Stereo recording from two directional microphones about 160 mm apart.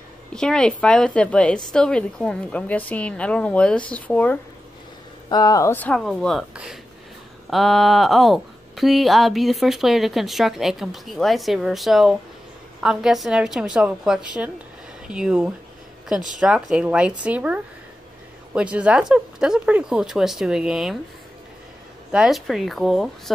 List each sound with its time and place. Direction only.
0.3 s a woman's voice: 5° left (ahead or behind)
5.3 s speech: 25° left (ahead or behind)
5.9 s speech: centre (ahead or behind)
22.1 s speech: 5° right (ahead or behind)